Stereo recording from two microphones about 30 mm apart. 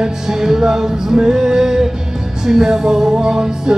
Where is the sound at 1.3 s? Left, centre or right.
Centre.